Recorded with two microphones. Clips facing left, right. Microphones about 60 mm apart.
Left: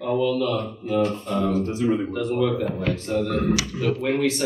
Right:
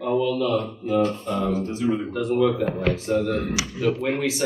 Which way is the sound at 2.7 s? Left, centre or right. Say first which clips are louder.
Right 2 dB; right.